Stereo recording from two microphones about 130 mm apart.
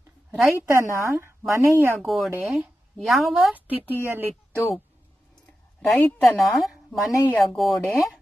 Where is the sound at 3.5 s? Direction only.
15° right (ahead or behind).